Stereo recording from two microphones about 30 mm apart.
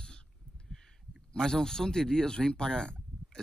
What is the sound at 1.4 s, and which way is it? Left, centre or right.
Speech, left.